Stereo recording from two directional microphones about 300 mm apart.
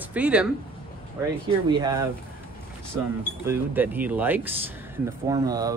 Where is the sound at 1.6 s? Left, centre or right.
Centre.